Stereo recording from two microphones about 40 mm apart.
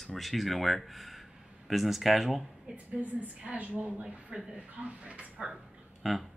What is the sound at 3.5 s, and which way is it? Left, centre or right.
A man's voice, right.